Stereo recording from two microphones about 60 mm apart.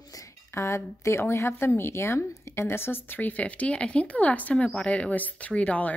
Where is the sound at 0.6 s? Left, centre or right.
Left.